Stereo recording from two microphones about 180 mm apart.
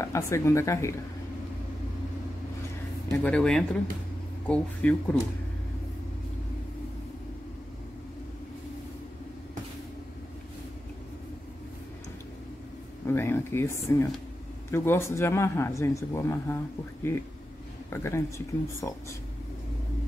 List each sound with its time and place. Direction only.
0.0 s speech: 15° left (ahead or behind)
3.1 s speech: 5° left (ahead or behind)
13.0 s speech: 10° left (ahead or behind)
17.8 s speech: 15° left (ahead or behind)